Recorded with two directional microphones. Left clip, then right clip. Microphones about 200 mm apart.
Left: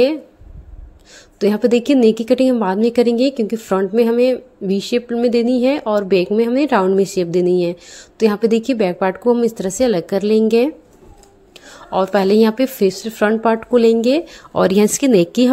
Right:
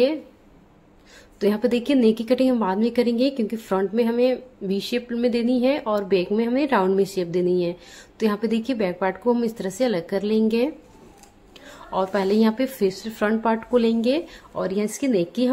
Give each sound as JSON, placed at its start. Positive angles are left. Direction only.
{"t": 1.1, "sound": "a woman's voice", "side_deg": 25}
{"t": 14.5, "sound": "speech", "side_deg": 40}